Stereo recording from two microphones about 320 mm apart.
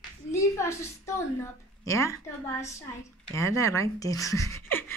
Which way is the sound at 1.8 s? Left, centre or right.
Centre.